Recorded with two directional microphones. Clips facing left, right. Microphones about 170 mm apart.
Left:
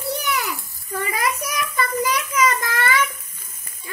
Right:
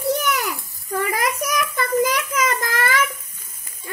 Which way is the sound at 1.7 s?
50° right (ahead or behind).